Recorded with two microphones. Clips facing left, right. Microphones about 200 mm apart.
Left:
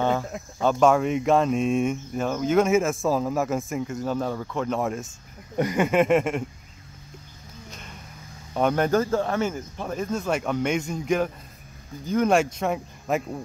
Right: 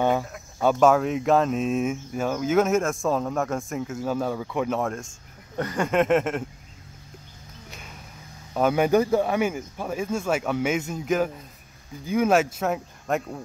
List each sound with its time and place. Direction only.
0.6 s speech: 5° right (ahead or behind)
7.7 s a sound: 5° right (ahead or behind)
8.5 s speech: 5° right (ahead or behind)